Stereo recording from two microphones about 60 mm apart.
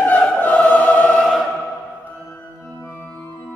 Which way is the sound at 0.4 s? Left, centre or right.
Left.